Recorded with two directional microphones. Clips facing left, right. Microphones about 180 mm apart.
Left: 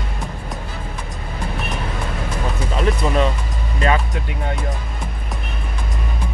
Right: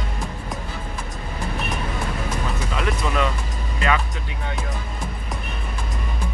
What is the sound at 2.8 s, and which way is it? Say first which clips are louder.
Music: left 5 dB; 35° left (ahead or behind).